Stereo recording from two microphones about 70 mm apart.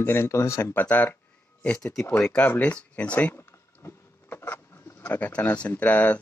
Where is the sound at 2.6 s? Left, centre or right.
Centre.